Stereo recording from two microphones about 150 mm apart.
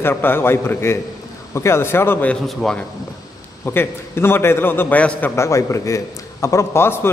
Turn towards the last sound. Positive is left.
turn(degrees=15)  # may be behind; listen again after turning